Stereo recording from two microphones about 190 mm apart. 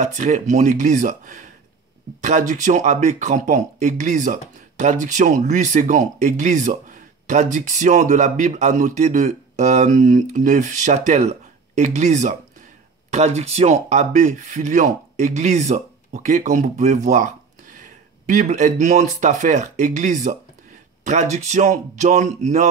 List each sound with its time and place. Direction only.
0.0 s speech: 40° right (ahead or behind)